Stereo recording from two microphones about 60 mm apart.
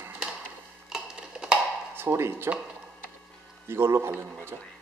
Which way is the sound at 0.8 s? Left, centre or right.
Centre.